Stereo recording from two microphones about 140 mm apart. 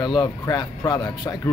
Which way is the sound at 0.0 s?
30° left (ahead or behind).